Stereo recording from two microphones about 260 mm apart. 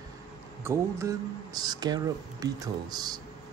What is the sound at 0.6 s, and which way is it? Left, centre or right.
Speech, centre.